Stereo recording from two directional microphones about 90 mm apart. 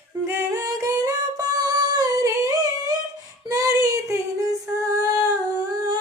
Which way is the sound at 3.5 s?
40° right (ahead or behind).